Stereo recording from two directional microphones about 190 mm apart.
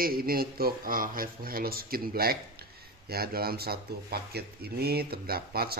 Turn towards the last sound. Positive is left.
turn(degrees=-55)  # may be behind; listen again after turning